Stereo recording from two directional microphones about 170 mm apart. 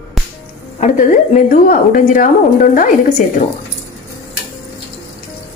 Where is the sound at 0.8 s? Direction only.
45° left (ahead or behind).